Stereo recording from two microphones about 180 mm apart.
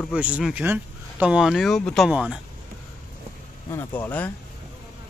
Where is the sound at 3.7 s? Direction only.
10° left (ahead or behind).